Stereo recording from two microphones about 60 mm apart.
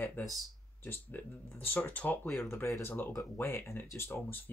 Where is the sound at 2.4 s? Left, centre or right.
Left.